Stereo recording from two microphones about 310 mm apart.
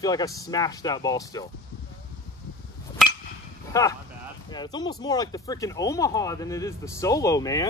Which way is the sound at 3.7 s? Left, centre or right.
Centre.